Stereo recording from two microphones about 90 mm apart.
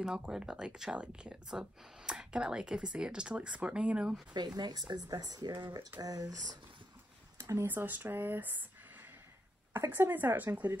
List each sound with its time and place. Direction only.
0.0 s speech: 10° right (ahead or behind)
4.3 s speech: 50° right (ahead or behind)
7.3 s speech: 30° right (ahead or behind)
9.7 s speech: 25° right (ahead or behind)